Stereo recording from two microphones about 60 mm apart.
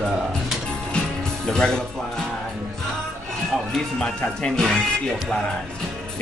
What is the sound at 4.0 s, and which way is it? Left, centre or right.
Music, centre.